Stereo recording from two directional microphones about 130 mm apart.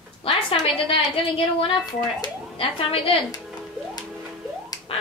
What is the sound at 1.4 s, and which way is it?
A woman's voice, 45° left (ahead or behind).